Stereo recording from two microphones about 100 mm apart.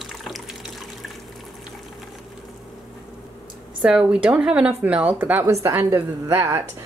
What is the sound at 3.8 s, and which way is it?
Speech, 10° right (ahead or behind).